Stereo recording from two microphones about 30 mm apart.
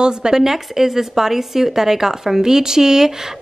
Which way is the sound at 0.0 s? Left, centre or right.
Right.